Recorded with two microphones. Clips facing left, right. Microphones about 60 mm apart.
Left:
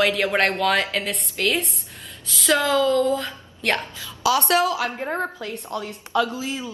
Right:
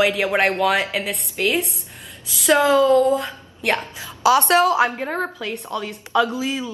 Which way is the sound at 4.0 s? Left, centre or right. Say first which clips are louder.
Right 8 dB; right.